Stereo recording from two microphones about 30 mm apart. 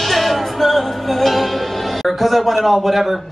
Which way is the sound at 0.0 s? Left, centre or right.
Centre.